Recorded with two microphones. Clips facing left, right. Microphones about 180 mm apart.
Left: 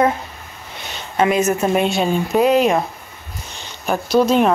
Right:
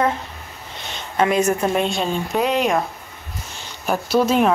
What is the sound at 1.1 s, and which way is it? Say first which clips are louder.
Speech: left 1 dB; 20° left (ahead or behind).